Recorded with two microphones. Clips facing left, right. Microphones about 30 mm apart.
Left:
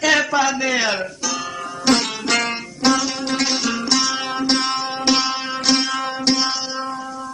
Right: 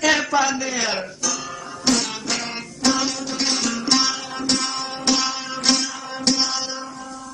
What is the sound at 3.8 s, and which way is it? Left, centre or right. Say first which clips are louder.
Music: right 1 dB; centre.